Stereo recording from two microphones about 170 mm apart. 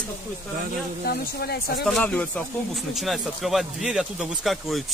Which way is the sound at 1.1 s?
65° left (ahead or behind).